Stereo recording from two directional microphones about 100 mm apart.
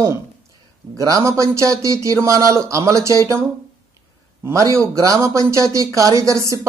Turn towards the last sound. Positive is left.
turn(degrees=-30)  # may be behind; listen again after turning